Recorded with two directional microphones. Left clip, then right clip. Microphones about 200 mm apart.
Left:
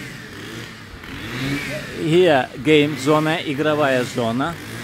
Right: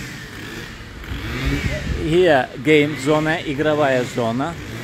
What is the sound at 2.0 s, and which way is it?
Speech, 15° left (ahead or behind).